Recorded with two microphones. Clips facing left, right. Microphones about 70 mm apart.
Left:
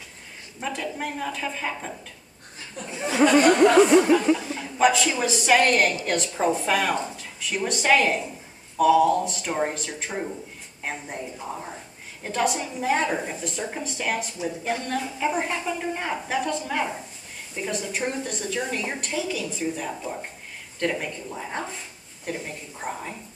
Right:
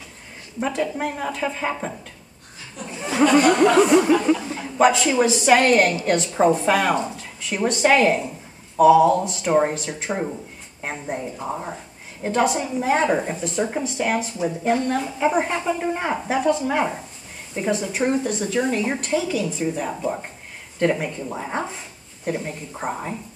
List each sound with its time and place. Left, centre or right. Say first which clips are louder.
0.6 s a woman's voice: right 6 dB; centre
3.1 s a woman's voice: right 2 dB; centre
3.4 s a woman's voice: right 1 dB; centre
4.5 s a sound: right 3 dB; centre
5.2 s a woman's voice: right 4 dB; centre
7.6 s a woman's voice: right 8 dB; centre
7.9 s a woman's voice: even; centre
9.4 s a woman's voice: right 7 dB; centre
11.3 s speech: right 5 dB; right
12.8 s a woman's voice: right 4 dB; centre
17.6 s a woman's voice: right 6 dB; centre
19.8 s a woman's voice: right 6 dB; right
22.2 s a woman's voice: right 6 dB; centre
22.8 s speech: right 5 dB; right